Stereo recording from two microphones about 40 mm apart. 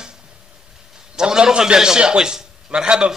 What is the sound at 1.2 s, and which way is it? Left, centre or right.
A man's voice, centre.